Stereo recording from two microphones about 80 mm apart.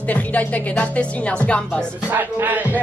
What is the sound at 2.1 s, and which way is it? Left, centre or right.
Music, right.